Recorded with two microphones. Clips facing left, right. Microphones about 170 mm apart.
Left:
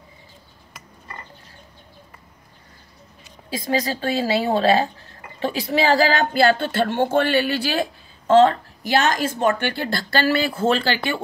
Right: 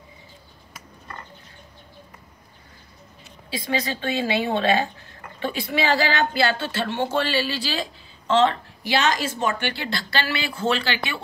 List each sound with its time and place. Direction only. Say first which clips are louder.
3.4 s a woman's voice: left 3 dB; 45° left (ahead or behind)